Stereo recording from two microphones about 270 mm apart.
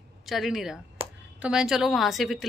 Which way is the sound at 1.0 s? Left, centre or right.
Right.